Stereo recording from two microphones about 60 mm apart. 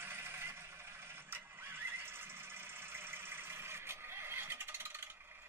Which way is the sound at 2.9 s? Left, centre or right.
Right.